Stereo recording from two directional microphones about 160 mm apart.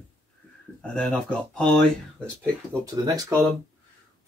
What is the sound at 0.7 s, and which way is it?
Speech, 5° left (ahead or behind).